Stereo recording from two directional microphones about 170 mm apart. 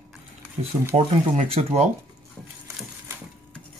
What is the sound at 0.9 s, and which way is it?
Speech, 35° right (ahead or behind).